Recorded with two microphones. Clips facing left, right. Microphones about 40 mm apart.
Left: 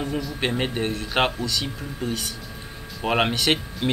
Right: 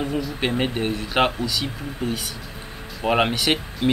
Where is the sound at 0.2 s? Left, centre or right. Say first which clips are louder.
Right 2 dB; centre.